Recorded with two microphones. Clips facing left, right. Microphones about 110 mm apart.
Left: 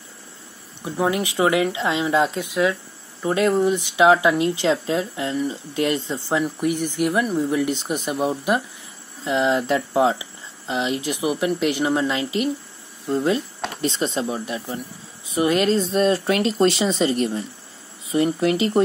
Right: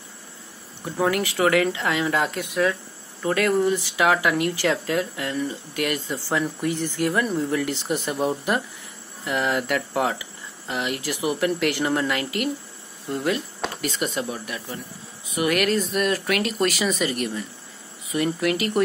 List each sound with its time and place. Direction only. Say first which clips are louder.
0.8 s speech: left 1 dB; 15° left (ahead or behind)